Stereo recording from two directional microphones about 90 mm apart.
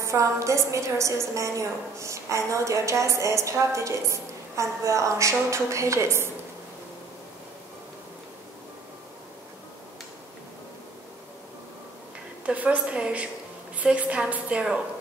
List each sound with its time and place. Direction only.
0.0 s a woman's voice: 35° right (ahead or behind)
12.4 s a woman's voice: 15° right (ahead or behind)